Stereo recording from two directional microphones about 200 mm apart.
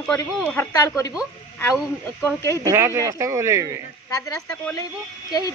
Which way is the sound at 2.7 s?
15° right (ahead or behind).